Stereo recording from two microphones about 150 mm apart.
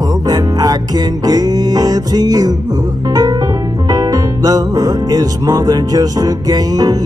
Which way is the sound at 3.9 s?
25° right (ahead or behind).